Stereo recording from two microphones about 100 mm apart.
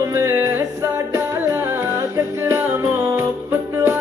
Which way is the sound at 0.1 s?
30° right (ahead or behind).